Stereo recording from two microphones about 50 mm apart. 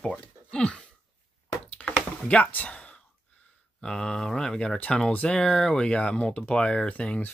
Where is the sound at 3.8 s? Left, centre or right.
Centre.